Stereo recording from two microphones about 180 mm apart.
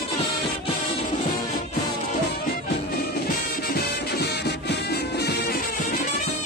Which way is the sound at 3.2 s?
60° left (ahead or behind).